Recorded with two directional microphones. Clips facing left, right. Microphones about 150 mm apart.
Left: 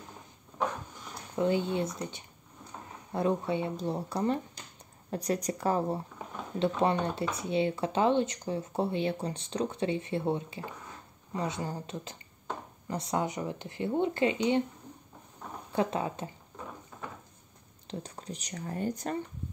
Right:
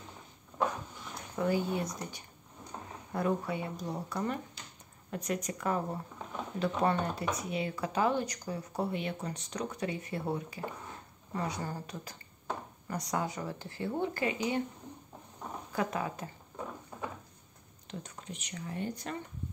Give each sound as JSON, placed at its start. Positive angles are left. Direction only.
{"t": 1.3, "sound": "speech", "side_deg": 25}
{"t": 15.7, "sound": "speech", "side_deg": 25}
{"t": 17.8, "sound": "speech", "side_deg": 35}